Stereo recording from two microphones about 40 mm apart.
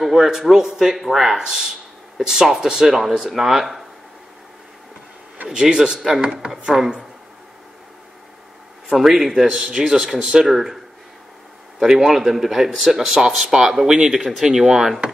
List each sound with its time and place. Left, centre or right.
0.0 s speech: centre
2.9 s speech: centre
5.5 s speech: centre
6.5 s speech: centre
8.9 s speech: centre
9.5 s speech: right
11.8 s speech: centre